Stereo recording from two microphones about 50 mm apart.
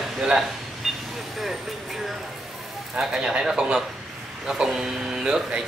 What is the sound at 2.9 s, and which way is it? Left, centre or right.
Speech, centre.